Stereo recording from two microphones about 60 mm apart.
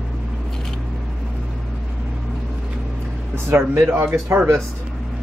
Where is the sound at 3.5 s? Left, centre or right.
Right.